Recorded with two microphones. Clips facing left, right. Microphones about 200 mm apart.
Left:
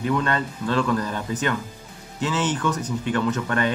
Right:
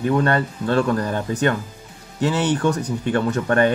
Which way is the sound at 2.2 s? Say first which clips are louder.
Right 5 dB; 40° right (ahead or behind).